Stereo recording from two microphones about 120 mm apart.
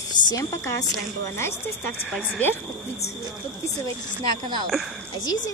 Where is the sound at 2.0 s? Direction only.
Centre (ahead or behind).